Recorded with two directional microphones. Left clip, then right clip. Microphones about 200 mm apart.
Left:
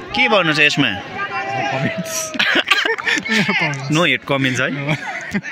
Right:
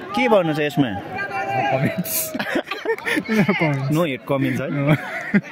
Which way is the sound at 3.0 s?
60° right (ahead or behind).